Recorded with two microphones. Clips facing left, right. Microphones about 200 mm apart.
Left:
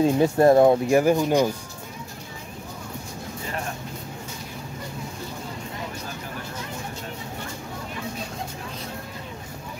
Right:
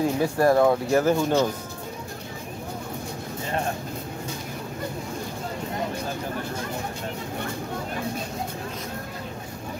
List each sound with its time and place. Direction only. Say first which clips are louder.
0.0 s speech: left 4 dB; 25° left (ahead or behind)
0.8 s speech: left 2 dB; 15° left (ahead or behind)